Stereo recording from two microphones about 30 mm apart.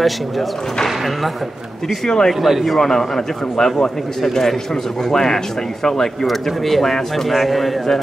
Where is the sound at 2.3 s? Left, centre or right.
Centre.